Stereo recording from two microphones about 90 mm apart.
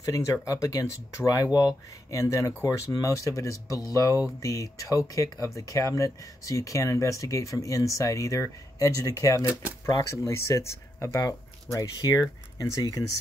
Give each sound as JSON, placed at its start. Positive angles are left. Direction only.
{"t": 0.0, "sound": "speech", "side_deg": 35}